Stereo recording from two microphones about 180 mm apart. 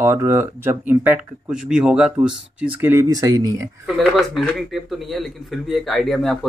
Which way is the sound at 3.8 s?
Centre (ahead or behind).